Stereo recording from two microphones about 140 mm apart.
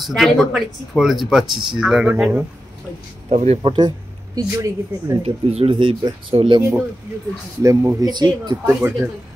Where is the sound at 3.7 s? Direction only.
30° right (ahead or behind).